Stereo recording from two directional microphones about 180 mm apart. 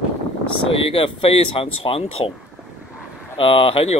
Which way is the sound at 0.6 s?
30° left (ahead or behind).